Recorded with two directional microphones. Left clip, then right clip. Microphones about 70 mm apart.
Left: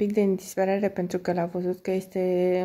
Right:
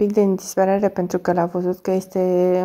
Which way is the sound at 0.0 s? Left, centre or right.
Right.